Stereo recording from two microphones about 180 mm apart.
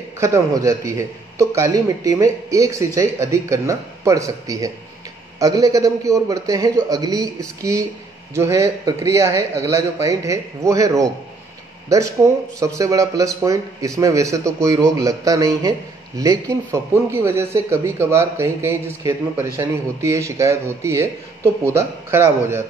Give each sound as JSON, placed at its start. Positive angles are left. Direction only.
{"t": 0.2, "sound": "a man's voice", "side_deg": -15}